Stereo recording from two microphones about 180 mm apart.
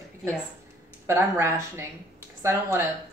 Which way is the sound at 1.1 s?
15° right (ahead or behind).